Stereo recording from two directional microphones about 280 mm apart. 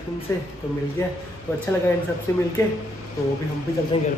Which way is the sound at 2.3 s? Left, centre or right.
Centre.